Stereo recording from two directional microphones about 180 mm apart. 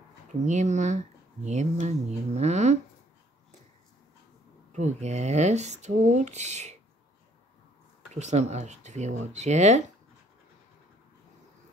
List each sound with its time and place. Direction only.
0.3 s speech: 40° right (ahead or behind)
4.7 s speech: 40° right (ahead or behind)
8.1 s speech: 40° right (ahead or behind)